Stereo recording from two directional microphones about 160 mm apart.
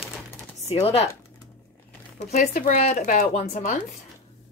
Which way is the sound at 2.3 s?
45° left (ahead or behind).